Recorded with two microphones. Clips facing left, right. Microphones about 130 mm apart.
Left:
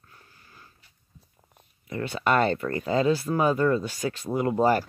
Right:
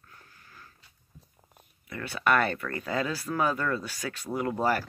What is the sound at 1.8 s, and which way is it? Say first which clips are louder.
Speech: left 2 dB; 20° left (ahead or behind).